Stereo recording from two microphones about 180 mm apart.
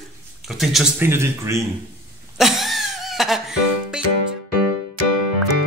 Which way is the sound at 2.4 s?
Centre (ahead or behind).